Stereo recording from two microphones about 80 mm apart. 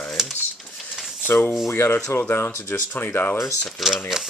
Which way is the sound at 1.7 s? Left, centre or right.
Left.